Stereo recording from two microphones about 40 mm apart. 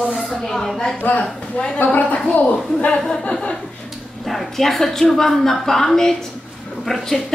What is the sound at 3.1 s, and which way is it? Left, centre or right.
Chuckle, left.